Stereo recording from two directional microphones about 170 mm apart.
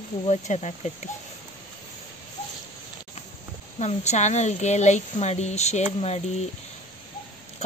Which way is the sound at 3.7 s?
40° left (ahead or behind).